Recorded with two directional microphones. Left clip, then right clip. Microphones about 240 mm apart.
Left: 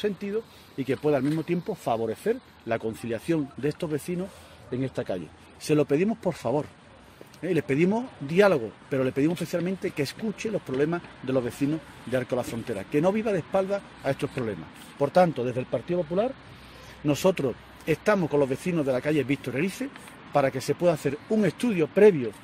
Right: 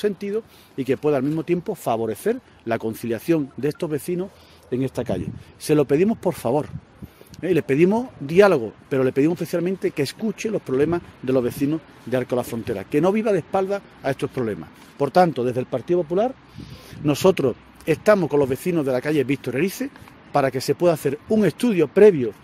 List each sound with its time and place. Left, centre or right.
0.0 s speech: right